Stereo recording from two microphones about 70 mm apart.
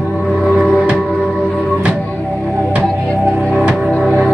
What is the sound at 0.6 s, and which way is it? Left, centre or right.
Music, centre.